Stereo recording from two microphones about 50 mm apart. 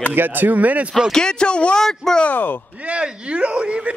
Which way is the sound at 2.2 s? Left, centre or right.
Left.